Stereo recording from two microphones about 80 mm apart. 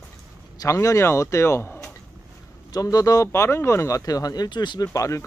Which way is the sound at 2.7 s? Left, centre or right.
Left.